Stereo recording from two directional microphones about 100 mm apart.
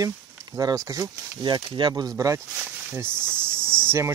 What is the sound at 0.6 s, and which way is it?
Speech, 35° right (ahead or behind).